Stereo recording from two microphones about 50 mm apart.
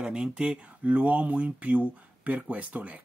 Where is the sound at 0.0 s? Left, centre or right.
Centre.